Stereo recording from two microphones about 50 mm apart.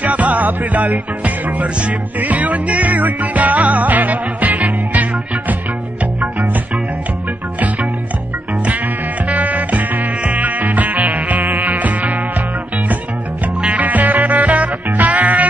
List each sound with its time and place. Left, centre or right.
0.0 s music: right
9.3 s music: right
13.6 s music: right